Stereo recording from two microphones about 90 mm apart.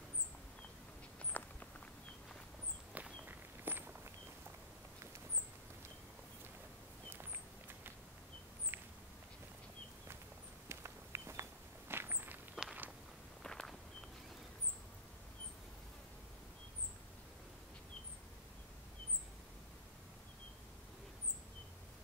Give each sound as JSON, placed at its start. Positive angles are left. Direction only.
{"t": 1.3, "sound": "walk", "side_deg": 20}
{"t": 2.9, "sound": "walk", "side_deg": -20}
{"t": 10.7, "sound": "walk", "side_deg": -30}
{"t": 12.6, "sound": "walk", "side_deg": -10}
{"t": 13.4, "sound": "walk", "side_deg": 5}